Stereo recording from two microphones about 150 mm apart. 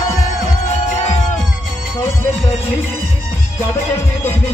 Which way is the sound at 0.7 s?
50° left (ahead or behind).